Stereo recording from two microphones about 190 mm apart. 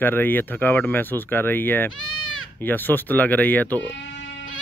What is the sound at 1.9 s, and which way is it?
Bleat, 90° left.